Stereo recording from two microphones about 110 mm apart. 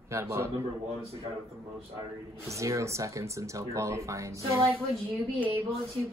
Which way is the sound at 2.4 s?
30° right (ahead or behind).